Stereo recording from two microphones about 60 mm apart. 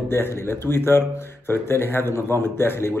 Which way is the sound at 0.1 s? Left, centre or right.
Left.